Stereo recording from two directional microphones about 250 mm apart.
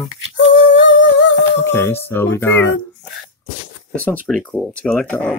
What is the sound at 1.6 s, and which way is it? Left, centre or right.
Speech, centre.